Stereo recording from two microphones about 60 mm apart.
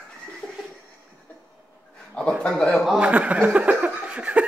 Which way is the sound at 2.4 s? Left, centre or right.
Centre.